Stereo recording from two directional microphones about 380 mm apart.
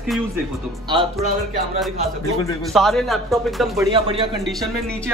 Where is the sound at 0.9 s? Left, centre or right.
Centre.